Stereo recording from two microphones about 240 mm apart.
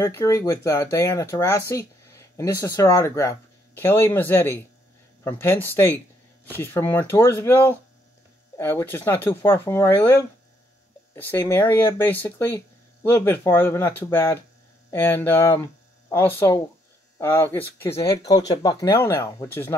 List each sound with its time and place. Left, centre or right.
0.0 s speech: centre